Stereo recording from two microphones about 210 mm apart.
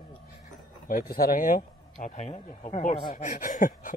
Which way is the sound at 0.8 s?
45° left (ahead or behind).